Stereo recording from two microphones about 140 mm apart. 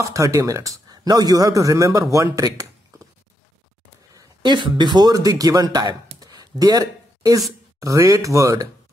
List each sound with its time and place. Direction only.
0.0 s speech: 20° right (ahead or behind)
4.1 s speech: 30° right (ahead or behind)